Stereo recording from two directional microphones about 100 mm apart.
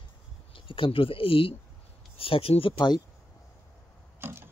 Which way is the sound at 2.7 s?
50° left (ahead or behind).